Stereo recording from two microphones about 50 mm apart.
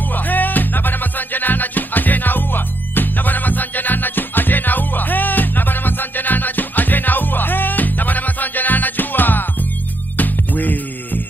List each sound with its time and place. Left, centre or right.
0.1 s music: left